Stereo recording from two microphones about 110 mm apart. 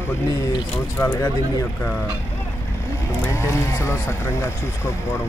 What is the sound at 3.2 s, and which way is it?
Speech, 25° left (ahead or behind).